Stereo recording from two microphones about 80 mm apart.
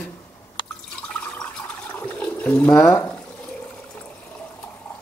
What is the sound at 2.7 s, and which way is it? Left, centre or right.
Speech, left.